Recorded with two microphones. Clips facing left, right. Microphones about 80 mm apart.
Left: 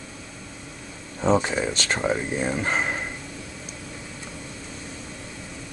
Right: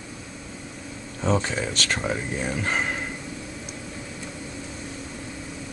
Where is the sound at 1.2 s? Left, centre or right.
Centre.